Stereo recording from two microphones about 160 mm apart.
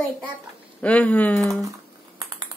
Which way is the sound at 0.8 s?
10° left (ahead or behind).